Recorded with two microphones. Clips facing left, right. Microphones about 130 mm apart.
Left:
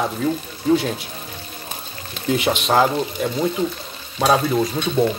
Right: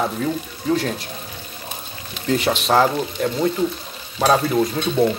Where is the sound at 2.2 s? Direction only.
Centre (ahead or behind).